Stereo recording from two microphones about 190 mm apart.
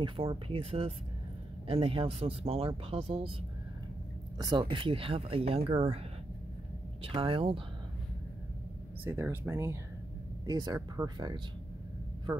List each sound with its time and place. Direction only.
0.0 s speech: 25° right (ahead or behind)
4.4 s speech: 25° right (ahead or behind)
7.0 s speech: 30° right (ahead or behind)
9.0 s speech: 10° right (ahead or behind)